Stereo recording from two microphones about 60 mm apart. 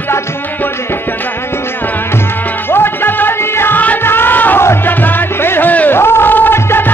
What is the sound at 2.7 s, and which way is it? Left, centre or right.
Music, left.